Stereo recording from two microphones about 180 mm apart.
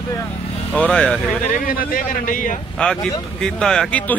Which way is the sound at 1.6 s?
55° left (ahead or behind).